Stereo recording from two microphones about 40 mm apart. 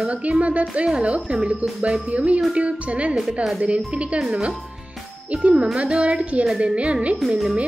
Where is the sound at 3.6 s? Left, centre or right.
Right.